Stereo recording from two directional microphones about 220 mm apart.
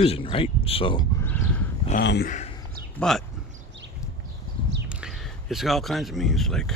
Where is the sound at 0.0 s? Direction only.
25° left (ahead or behind).